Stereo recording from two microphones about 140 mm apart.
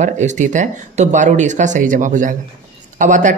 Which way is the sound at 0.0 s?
60° right (ahead or behind).